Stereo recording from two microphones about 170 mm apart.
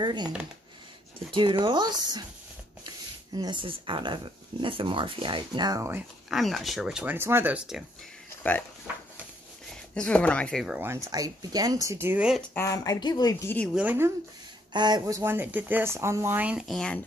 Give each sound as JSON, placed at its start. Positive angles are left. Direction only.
{"t": 0.0, "sound": "speech", "side_deg": -25}
{"t": 1.3, "sound": "speech", "side_deg": -25}
{"t": 3.3, "sound": "speech", "side_deg": -25}
{"t": 6.3, "sound": "speech", "side_deg": 0}
{"t": 9.9, "sound": "speech", "side_deg": 5}
{"t": 11.1, "sound": "speech", "side_deg": -20}
{"t": 12.4, "sound": "speech", "side_deg": 15}
{"t": 13.7, "sound": "speech", "side_deg": -10}
{"t": 14.7, "sound": "speech", "side_deg": -25}